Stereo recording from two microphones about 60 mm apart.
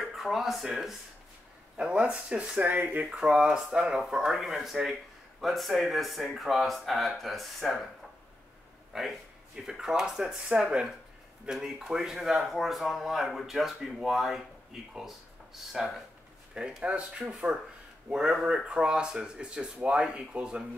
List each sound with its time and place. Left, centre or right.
0.0 s speech: centre; by 3.2 s right
3.2 s speech: centre
8.9 s speech: centre
16.5 s speech: centre